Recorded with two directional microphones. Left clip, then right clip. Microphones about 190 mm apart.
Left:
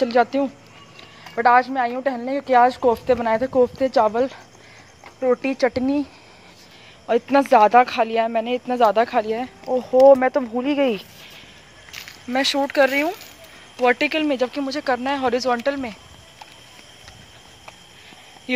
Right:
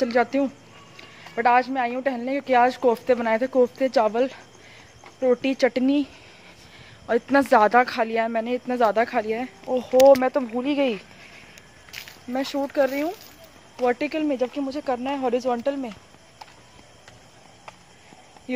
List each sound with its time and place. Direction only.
0.0 s speech: 10° right (ahead or behind)
7.1 s speech: 10° right (ahead or behind)
11.9 s a sound: 25° right (ahead or behind)
12.3 s speech: centre (ahead or behind)